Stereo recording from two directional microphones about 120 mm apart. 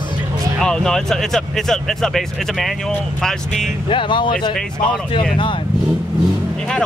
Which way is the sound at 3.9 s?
45° left (ahead or behind).